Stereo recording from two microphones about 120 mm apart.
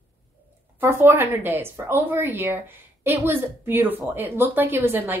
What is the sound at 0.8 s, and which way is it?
Speech, 20° right (ahead or behind).